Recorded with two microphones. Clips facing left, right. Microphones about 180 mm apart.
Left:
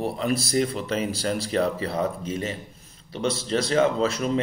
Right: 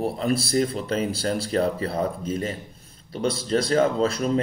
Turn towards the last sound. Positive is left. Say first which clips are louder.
# right 1 dB
turn(degrees=-35)  # may be behind; listen again after turning